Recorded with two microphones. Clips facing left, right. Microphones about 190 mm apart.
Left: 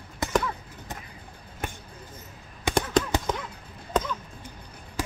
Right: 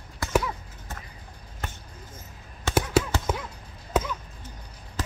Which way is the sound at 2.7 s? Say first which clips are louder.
Even; 15° left (ahead or behind).